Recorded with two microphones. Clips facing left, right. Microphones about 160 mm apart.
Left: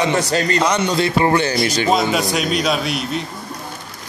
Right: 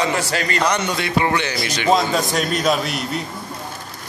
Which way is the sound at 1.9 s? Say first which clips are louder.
Right 3 dB; 5° left (ahead or behind).